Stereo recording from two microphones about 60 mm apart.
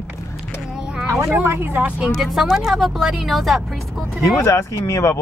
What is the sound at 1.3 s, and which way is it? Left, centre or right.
Speech, right.